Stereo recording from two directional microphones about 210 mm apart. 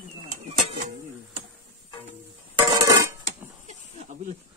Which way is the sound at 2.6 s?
10° right (ahead or behind).